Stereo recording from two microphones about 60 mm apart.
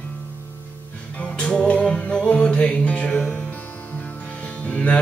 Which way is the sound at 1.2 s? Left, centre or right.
Centre.